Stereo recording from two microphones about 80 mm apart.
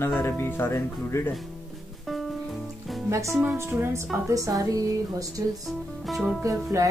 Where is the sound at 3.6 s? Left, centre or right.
Right.